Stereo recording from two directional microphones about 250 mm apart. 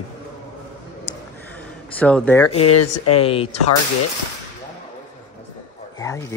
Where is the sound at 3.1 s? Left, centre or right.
Left.